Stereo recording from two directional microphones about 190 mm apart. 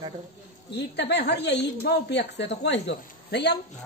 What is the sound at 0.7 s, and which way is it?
Speech, 60° left (ahead or behind).